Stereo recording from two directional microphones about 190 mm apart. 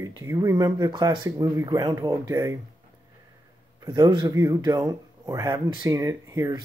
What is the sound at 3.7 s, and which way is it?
Speech, 20° right (ahead or behind).